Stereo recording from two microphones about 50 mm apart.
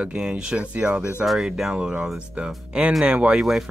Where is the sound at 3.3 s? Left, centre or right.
Centre.